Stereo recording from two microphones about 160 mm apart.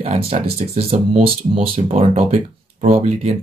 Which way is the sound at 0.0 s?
40° right (ahead or behind).